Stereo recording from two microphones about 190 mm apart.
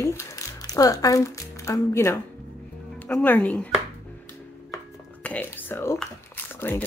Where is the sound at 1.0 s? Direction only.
15° left (ahead or behind).